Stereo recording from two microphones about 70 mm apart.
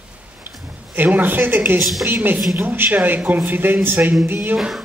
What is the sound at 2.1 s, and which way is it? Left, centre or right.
A man's voice, right.